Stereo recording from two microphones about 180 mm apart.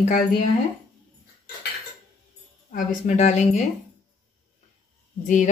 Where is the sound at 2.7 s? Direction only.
40° left (ahead or behind).